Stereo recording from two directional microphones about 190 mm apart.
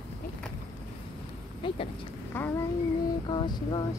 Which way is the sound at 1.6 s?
25° left (ahead or behind).